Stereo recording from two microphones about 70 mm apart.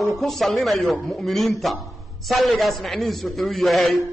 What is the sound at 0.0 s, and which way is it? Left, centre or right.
A man's voice, centre.